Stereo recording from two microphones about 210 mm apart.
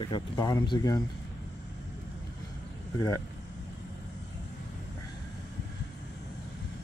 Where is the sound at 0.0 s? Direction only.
20° left (ahead or behind).